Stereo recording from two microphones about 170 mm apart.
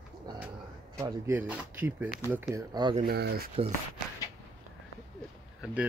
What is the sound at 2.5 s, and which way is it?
Speech, 25° right (ahead or behind).